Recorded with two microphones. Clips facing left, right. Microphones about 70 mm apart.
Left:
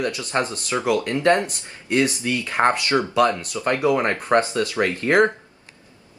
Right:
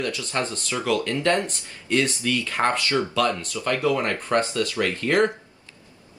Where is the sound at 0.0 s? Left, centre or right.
Left.